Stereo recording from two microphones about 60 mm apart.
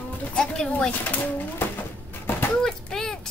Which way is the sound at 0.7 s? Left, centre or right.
Left.